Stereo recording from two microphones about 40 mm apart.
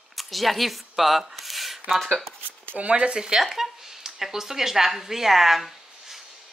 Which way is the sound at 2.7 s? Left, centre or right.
Right.